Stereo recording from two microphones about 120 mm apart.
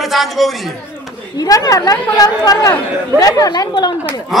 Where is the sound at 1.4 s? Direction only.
30° left (ahead or behind).